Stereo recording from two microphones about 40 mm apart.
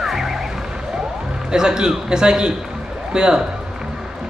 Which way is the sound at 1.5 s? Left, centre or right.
Centre.